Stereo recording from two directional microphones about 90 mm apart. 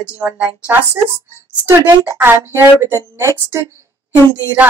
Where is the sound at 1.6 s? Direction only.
30° right (ahead or behind).